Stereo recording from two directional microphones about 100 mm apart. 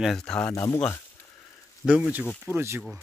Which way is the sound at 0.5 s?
30° left (ahead or behind).